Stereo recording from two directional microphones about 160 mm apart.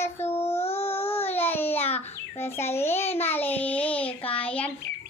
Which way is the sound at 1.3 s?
15° left (ahead or behind).